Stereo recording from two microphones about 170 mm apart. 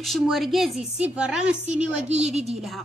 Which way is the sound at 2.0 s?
40° right (ahead or behind).